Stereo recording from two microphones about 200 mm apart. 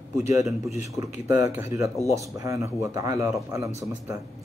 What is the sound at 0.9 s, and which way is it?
A man's voice, 15° right (ahead or behind).